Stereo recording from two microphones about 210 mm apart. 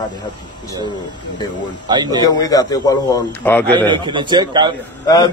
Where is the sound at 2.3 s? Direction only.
15° left (ahead or behind).